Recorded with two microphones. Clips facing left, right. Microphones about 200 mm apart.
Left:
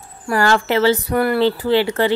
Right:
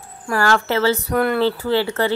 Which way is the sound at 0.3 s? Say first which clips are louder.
Left 2 dB; 15° left (ahead or behind).